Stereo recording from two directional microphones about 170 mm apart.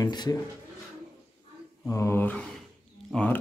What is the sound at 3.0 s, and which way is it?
Speech, 5° left (ahead or behind).